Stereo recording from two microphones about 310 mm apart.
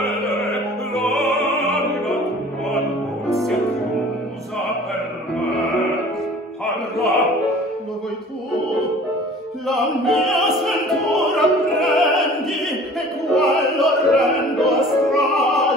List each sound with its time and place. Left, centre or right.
0.5 s music: centre
1.3 s music: centre
6.6 s music: centre
9.7 s opera: centre